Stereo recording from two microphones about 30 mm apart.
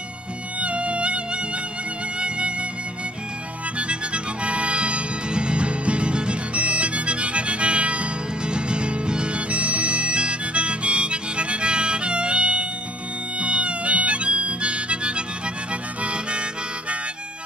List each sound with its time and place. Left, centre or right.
0.6 s music: right
3.7 s music: right
6.5 s music: right
8.5 s music: right
9.5 s harmonica: right
15.7 s music: right